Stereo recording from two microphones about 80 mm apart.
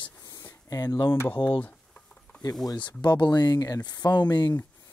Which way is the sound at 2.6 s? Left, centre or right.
Left.